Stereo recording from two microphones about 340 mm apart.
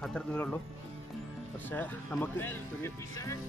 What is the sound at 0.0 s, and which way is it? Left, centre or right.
Speech, centre.